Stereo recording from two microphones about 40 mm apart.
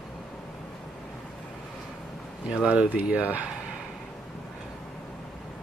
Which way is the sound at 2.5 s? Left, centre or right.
Right.